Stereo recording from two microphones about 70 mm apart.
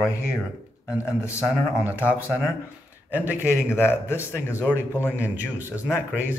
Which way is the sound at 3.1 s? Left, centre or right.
Right.